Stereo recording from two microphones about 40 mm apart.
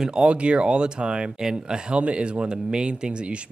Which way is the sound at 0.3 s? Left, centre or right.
Right.